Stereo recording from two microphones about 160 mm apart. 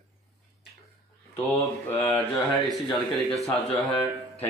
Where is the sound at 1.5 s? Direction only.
15° left (ahead or behind).